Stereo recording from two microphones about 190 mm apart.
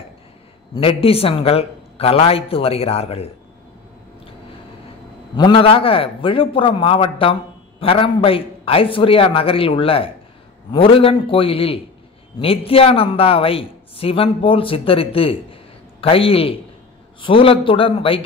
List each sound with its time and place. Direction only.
0.7 s a man's voice: 30° left (ahead or behind)
5.3 s speech: 25° left (ahead or behind)